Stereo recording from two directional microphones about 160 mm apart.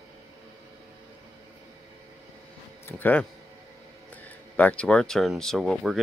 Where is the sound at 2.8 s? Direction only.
10° left (ahead or behind).